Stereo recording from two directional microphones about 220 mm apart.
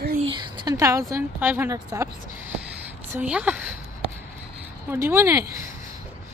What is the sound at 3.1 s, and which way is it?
Speech, 5° right (ahead or behind).